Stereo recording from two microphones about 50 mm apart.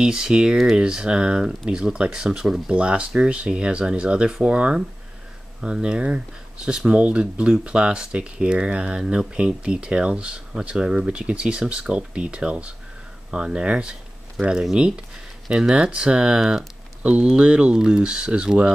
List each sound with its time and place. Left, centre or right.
0.0 s speech: centre
2.7 s speech: right
17.0 s speech: right